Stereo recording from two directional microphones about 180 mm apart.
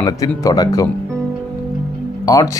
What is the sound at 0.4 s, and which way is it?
Speech, 20° left (ahead or behind).